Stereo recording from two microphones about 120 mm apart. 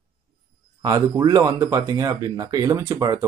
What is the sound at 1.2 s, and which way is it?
Speech, 30° right (ahead or behind).